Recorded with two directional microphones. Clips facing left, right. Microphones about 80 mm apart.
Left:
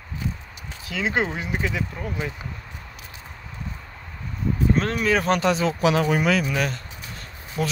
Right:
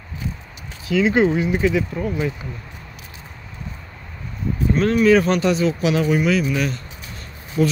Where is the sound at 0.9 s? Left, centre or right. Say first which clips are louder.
Right 11 dB; left.